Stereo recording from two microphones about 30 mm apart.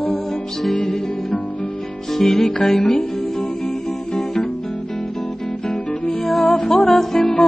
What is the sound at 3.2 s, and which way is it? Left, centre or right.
Music, left.